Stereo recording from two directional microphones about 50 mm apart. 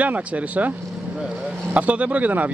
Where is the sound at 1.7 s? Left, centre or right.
Right.